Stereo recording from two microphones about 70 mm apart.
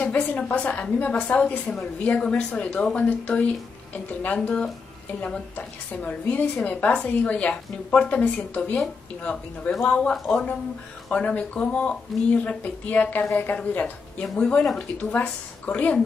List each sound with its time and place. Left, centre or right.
0.0 s a woman's voice: left
6.9 s a woman's voice: centre
11.1 s a woman's voice: centre